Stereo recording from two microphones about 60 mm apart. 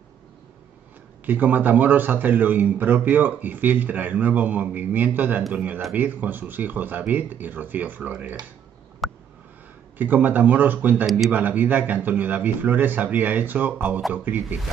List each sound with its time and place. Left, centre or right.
1.2 s a man's voice: right
9.0 s a sound: centre
9.9 s a man's voice: right